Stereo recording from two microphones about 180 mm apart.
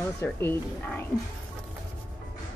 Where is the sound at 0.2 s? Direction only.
10° left (ahead or behind).